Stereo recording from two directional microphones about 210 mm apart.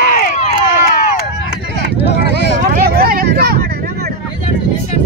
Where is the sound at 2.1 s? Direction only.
55° left (ahead or behind).